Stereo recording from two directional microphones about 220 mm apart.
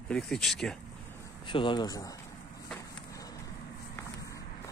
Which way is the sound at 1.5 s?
20° left (ahead or behind).